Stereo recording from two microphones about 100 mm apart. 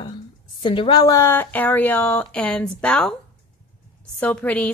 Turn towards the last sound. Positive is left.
turn(degrees=15)  # may be behind; listen again after turning